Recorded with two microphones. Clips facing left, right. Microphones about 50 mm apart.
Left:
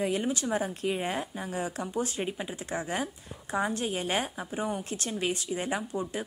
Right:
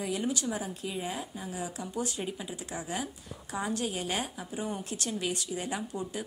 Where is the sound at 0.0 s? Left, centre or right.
Left.